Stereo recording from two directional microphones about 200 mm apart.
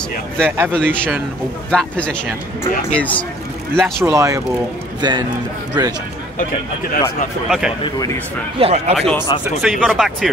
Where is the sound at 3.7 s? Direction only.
10° right (ahead or behind).